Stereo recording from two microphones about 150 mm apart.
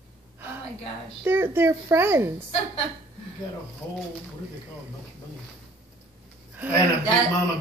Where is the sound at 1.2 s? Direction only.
15° right (ahead or behind).